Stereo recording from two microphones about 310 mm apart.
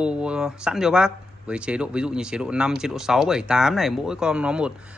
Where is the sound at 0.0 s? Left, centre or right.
Centre.